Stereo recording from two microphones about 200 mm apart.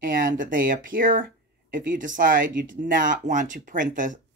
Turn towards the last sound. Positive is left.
turn(degrees=-40)  # may be behind; listen again after turning